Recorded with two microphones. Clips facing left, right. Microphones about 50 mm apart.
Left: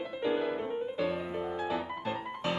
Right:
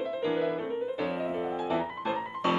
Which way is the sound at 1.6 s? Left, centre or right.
Centre.